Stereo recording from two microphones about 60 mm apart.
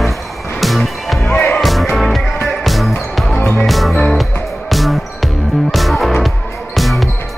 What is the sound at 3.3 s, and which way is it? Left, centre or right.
Music, left.